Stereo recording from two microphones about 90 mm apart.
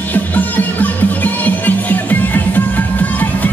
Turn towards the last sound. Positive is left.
turn(degrees=20)  # may be behind; listen again after turning